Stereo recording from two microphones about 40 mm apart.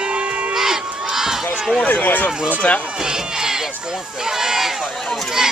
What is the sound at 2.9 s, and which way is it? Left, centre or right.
Speech, centre.